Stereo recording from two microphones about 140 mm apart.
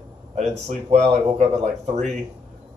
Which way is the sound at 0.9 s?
55° right (ahead or behind).